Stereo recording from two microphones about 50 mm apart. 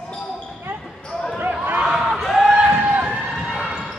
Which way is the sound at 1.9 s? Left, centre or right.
Centre.